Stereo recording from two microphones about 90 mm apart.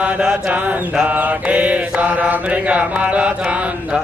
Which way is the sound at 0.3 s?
15° right (ahead or behind).